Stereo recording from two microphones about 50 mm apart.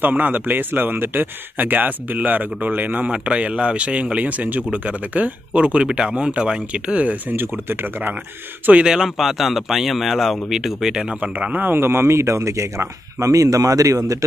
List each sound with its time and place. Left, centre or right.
0.0 s speech: right
3.1 s speech: right
7.3 s speech: right
8.8 s speech: centre
11.3 s speech: right
11.7 s speech: right